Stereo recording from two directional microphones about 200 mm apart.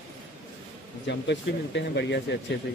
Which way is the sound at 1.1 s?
60° left (ahead or behind).